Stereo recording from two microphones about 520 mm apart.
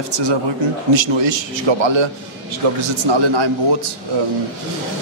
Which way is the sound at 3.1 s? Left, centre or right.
Right.